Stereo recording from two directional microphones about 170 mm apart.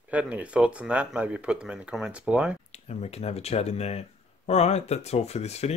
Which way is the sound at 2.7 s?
40° left (ahead or behind).